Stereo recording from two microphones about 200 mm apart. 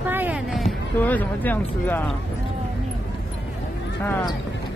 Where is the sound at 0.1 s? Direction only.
10° right (ahead or behind); by 2.1 s 10° left (ahead or behind).